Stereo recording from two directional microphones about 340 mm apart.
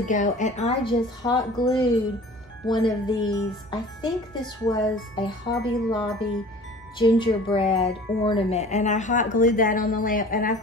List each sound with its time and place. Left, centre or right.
0.1 s a woman's voice: left